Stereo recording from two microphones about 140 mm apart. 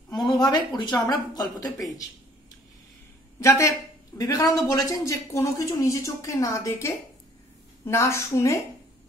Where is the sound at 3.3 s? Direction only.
25° left (ahead or behind).